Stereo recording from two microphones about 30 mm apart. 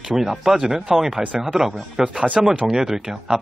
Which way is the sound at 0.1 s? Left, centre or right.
Centre.